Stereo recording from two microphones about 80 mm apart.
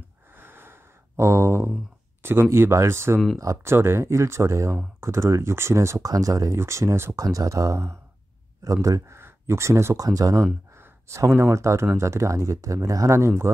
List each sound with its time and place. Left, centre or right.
0.4 s a sound: right
2.5 s speech: right
3.3 s speech: right
3.7 s speech: right
6.5 s speech: right
10.0 s speech: right
10.7 s speech: right